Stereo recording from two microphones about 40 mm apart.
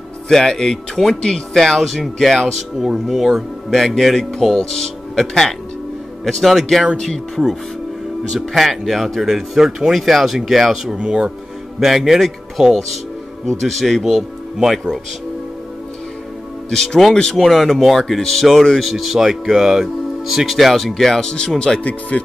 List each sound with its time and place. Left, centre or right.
0.3 s speech: centre
2.8 s speech: centre
3.7 s speech: centre
6.4 s speech: centre
7.0 s speech: centre
8.2 s speech: centre
11.0 s speech: right
11.8 s speech: centre
13.5 s speech: centre
14.0 s speech: centre
16.7 s speech: centre
17.4 s speech: centre
21.5 s speech: left